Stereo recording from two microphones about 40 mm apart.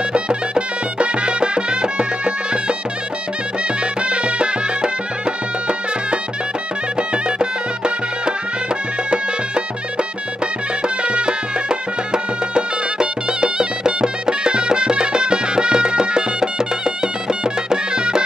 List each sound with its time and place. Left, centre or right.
0.1 s music: right
3.8 s music: right
9.9 s music: right